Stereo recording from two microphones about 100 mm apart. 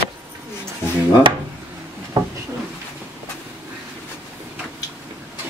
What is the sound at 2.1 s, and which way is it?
Drawer open or close, 40° right (ahead or behind).